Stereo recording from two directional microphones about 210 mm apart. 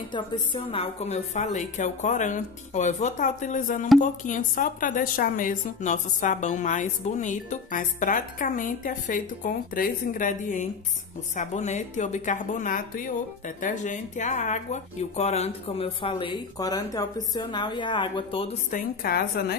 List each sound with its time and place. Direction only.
0.1 s a woman's voice: 25° left (ahead or behind)
18.7 s a woman's voice: 45° left (ahead or behind)